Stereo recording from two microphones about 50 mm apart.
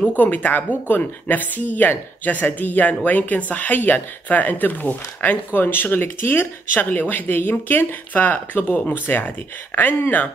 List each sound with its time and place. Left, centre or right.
0.2 s speech: left